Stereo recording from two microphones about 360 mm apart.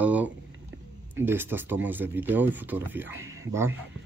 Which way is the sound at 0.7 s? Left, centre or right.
Right.